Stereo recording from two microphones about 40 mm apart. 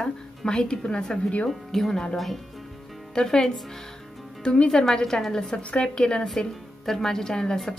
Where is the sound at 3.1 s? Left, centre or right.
Centre.